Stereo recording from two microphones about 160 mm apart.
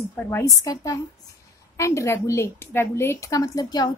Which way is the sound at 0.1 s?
15° left (ahead or behind).